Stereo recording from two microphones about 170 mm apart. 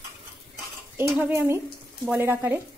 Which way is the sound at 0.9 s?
10° right (ahead or behind).